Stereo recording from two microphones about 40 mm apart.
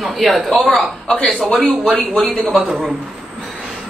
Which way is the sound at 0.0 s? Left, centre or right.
Centre.